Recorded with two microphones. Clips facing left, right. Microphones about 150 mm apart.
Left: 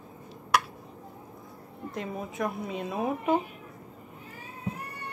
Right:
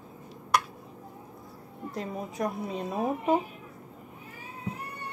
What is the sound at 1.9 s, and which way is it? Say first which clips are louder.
A woman's voice: even; 40° right (ahead or behind).